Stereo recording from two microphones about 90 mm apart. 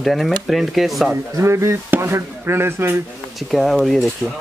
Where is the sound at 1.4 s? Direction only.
30° right (ahead or behind).